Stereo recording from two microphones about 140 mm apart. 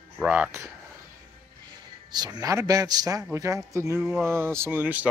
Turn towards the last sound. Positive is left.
turn(degrees=-15)  # may be behind; listen again after turning